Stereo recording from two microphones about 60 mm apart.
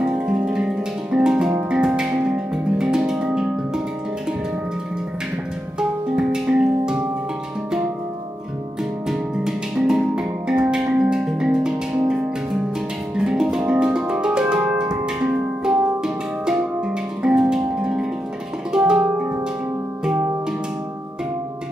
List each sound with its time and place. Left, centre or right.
0.0 s music: centre
5.8 s music: centre
9.4 s music: centre
13.1 s music: centre
14.4 s organ: right
14.8 s music: centre